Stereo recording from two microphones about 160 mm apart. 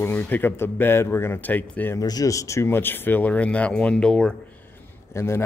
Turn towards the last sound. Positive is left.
turn(degrees=15)  # may be behind; listen again after turning